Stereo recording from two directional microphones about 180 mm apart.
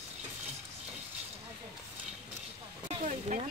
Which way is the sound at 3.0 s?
40° right (ahead or behind).